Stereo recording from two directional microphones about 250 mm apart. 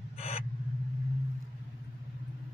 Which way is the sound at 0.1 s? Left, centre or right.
Left.